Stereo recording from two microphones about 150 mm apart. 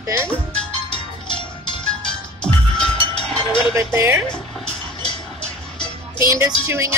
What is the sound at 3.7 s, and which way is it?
Music, 20° right (ahead or behind).